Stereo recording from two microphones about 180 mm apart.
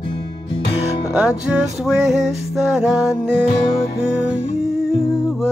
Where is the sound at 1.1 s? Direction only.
5° right (ahead or behind).